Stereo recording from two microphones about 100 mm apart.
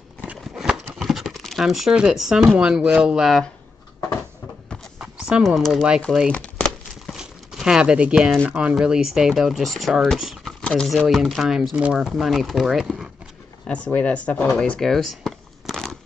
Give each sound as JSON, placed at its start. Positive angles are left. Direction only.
{"t": 0.6, "sound": "a sound", "side_deg": 0}
{"t": 2.4, "sound": "speech", "side_deg": -15}
{"t": 4.9, "sound": "a sound", "side_deg": -10}
{"t": 6.1, "sound": "speech", "side_deg": 5}
{"t": 7.1, "sound": "crumpling", "side_deg": -5}
{"t": 8.4, "sound": "speech", "side_deg": -10}
{"t": 10.6, "sound": "a sound", "side_deg": 10}
{"t": 11.0, "sound": "speech", "side_deg": 0}
{"t": 13.7, "sound": "speech", "side_deg": 15}